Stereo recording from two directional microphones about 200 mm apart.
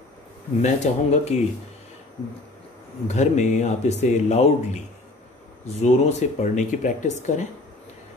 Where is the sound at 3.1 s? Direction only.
35° left (ahead or behind).